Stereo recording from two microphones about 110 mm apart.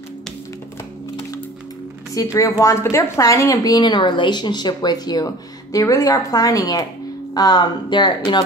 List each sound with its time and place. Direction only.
2.3 s a woman's voice: 30° left (ahead or behind); by 8.5 s 45° left (ahead or behind)